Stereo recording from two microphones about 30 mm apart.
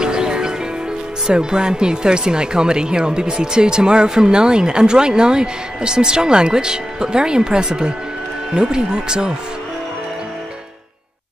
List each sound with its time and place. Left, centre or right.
0.0 s music: right
1.3 s speech: right